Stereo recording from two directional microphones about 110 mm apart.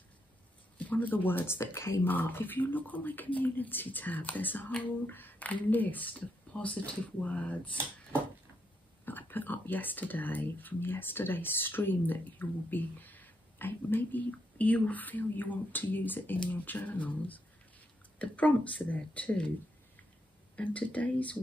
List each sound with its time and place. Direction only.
0.7 s speech: 15° left (ahead or behind)
20.5 s speech: 15° left (ahead or behind)